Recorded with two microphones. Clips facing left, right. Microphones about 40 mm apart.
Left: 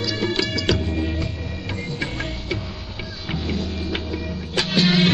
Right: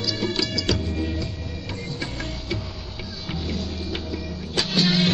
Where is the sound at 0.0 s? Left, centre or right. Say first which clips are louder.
Left 3 dB; left.